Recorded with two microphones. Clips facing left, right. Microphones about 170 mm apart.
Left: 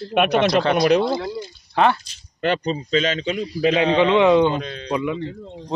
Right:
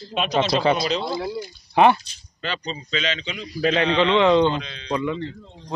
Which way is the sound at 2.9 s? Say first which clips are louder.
Left 7 dB; 45° left (ahead or behind).